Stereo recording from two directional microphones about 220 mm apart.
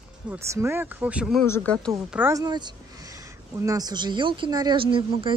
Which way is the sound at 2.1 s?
10° right (ahead or behind).